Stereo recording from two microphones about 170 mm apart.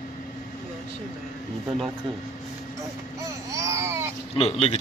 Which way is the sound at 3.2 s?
20° right (ahead or behind).